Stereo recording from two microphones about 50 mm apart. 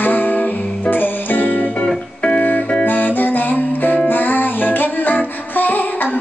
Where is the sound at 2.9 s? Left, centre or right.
Left.